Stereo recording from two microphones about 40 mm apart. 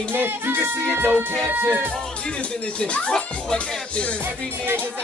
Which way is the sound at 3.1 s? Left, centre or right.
Centre.